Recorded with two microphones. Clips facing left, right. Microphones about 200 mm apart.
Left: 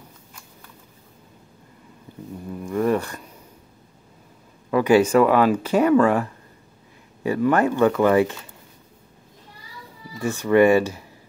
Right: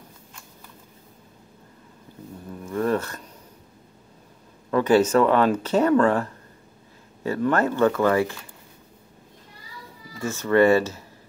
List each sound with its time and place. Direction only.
2.6 s a sound: 15° left (ahead or behind)
4.6 s speech: 10° left (ahead or behind)
7.2 s speech: 10° left (ahead or behind)
10.2 s speech: 15° left (ahead or behind)